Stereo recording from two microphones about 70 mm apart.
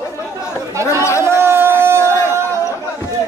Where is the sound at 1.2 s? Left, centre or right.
Right.